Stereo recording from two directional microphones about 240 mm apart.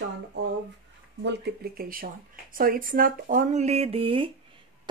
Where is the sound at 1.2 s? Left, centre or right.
Right.